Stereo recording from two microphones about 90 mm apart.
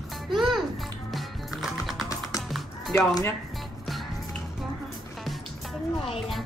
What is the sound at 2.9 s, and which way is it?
Speech, 35° left (ahead or behind).